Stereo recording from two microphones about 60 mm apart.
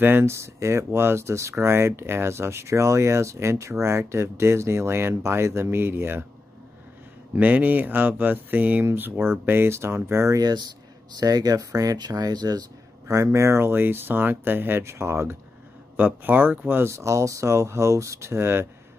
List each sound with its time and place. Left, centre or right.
0.0 s speech: right
7.3 s speech: right
11.1 s speech: right
13.1 s speech: right
16.0 s speech: right
16.9 s speech: right